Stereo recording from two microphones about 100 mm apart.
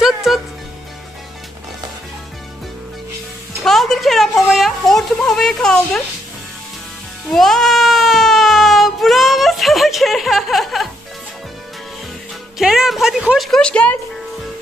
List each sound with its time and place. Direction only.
0.0 s music: 5° right (ahead or behind)
3.6 s speech: 5° left (ahead or behind)
7.2 s a sound: centre (ahead or behind)
12.5 s a woman's voice: 5° right (ahead or behind)
13.5 s speech: 10° left (ahead or behind)